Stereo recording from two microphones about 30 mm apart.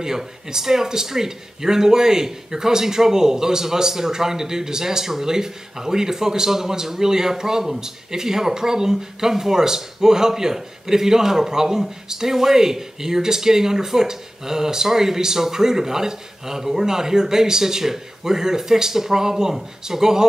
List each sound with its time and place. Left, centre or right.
0.0 s speech: centre